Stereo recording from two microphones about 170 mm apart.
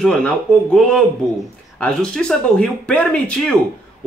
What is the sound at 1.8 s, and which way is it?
A man's voice, 5° left (ahead or behind).